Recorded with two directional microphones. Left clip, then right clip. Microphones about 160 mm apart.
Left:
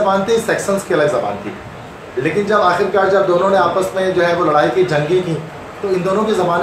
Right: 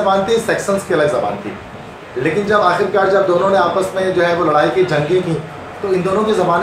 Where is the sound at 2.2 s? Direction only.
10° left (ahead or behind).